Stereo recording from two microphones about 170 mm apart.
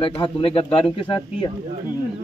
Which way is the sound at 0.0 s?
30° left (ahead or behind).